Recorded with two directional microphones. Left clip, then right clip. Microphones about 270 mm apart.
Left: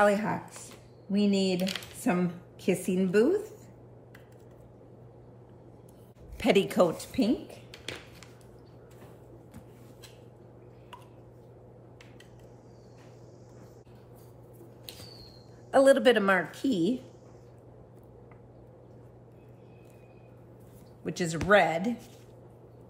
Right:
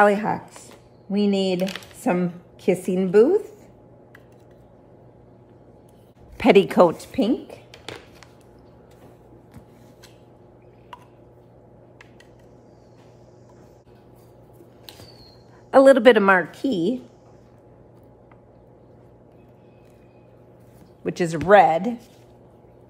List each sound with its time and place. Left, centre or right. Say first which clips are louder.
0.0 s a woman's voice: right 7 dB; right
6.3 s speech: right 9 dB; right
15.7 s a woman's voice: right 8 dB; right
21.0 s a woman's voice: right 8 dB; right